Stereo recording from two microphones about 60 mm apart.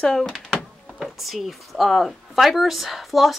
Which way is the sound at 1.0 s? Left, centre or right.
Centre.